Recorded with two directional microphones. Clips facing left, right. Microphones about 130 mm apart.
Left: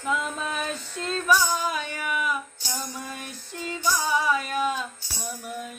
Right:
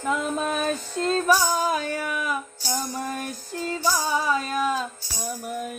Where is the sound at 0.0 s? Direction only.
40° right (ahead or behind).